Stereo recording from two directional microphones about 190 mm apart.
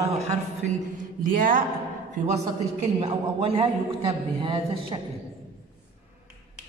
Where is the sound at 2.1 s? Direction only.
35° right (ahead or behind).